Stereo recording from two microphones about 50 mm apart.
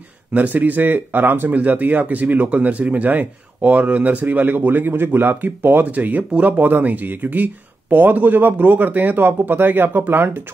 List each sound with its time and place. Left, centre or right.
0.3 s speech: right